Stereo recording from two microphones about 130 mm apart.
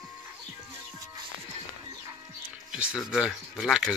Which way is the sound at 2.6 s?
5° right (ahead or behind).